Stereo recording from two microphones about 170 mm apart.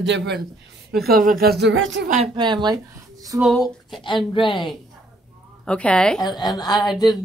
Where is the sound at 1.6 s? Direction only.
90° right.